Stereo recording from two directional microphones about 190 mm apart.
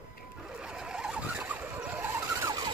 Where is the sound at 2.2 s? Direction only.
15° right (ahead or behind).